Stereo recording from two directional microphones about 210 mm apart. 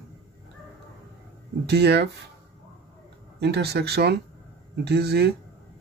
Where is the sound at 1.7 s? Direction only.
50° right (ahead or behind).